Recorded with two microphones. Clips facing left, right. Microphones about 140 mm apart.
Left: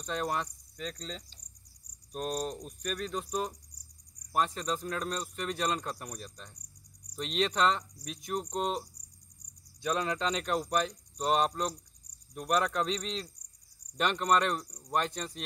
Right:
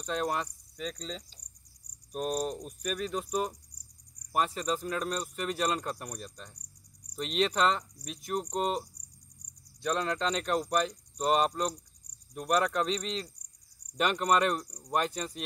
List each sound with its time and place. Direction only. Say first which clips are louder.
0.0 s speech: right 2 dB; centre (ahead or behind)